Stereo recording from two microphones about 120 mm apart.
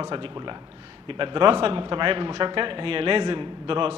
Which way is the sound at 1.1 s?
45° right (ahead or behind).